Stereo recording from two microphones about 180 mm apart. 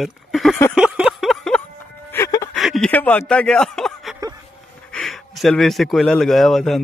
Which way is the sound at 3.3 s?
5° left (ahead or behind).